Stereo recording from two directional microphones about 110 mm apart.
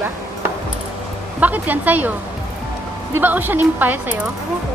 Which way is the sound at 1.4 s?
15° right (ahead or behind).